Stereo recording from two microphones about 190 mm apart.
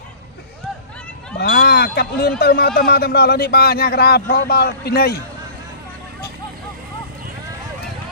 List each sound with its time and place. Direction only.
1.4 s speech: 55° left (ahead or behind)